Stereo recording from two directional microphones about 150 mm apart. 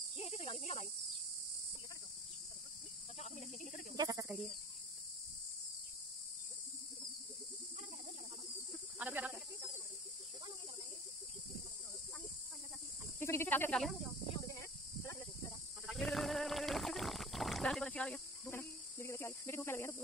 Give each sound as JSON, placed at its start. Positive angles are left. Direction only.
{"t": 0.2, "sound": "cricket", "side_deg": 40}
{"t": 3.2, "sound": "cricket", "side_deg": 50}
{"t": 3.9, "sound": "cricket", "side_deg": -25}
{"t": 8.9, "sound": "snake", "side_deg": -10}
{"t": 13.2, "sound": "snake", "side_deg": 15}
{"t": 14.5, "sound": "snake", "side_deg": 20}
{"t": 15.9, "sound": "a sound", "side_deg": 0}